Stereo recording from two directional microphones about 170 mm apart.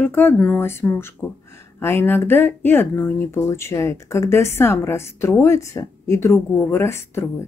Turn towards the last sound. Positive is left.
turn(degrees=15)  # may be behind; listen again after turning